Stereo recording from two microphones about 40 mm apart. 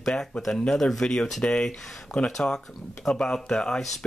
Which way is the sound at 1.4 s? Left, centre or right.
Left.